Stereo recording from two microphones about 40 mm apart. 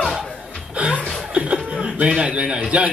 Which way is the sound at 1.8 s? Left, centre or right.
Right.